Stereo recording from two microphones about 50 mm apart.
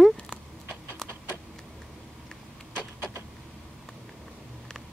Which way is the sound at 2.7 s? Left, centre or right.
Right.